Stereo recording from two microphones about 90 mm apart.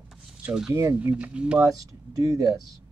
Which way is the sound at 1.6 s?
40° right (ahead or behind).